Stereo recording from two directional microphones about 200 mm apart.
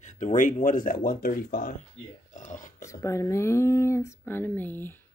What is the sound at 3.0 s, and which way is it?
Speech, 15° left (ahead or behind).